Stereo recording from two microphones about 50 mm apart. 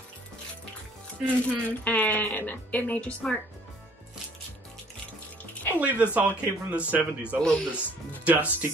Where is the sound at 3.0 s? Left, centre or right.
Left.